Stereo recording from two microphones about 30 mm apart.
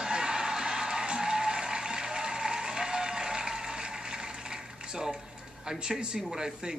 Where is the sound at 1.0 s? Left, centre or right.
Right.